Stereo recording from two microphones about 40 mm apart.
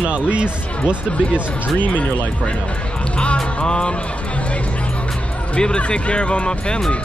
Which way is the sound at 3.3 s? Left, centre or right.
Left.